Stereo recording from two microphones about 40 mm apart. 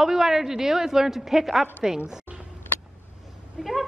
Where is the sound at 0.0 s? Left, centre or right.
Centre.